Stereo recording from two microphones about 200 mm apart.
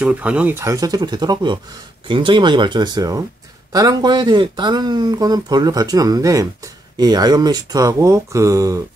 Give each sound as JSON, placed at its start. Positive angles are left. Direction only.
{"t": 0.0, "sound": "speech", "side_deg": -5}